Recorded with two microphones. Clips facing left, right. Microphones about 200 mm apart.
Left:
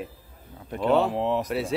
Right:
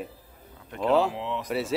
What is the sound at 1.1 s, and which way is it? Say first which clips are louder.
Speech: left 7 dB; 45° left (ahead or behind).